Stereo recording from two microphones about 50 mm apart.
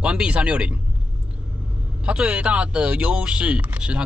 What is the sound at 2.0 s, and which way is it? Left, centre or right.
Speech, right.